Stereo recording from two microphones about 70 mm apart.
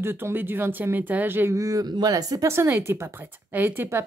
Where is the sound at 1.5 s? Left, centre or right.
Right.